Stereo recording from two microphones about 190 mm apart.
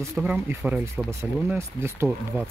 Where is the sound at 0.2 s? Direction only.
10° right (ahead or behind).